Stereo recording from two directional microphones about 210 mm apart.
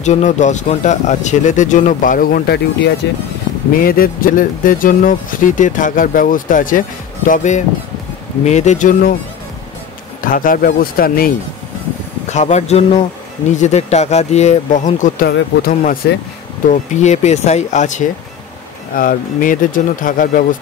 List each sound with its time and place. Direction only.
0.0 s speech: 35° left (ahead or behind)
10.2 s speech: 40° left (ahead or behind)
12.3 s speech: 35° left (ahead or behind)
15.2 s speech: 50° left (ahead or behind)